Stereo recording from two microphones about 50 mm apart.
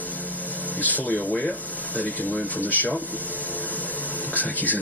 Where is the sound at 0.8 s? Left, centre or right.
Left.